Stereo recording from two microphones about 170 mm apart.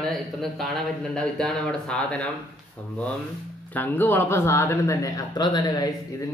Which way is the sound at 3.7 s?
10° left (ahead or behind).